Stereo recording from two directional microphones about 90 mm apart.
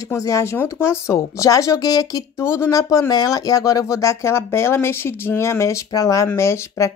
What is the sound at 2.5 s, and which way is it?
Speech, 30° left (ahead or behind).